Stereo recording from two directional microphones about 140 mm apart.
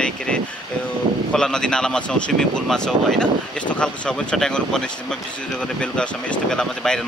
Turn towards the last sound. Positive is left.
turn(degrees=5)  # may be behind; listen again after turning